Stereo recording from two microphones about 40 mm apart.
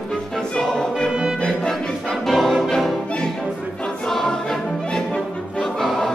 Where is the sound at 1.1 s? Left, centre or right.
Centre.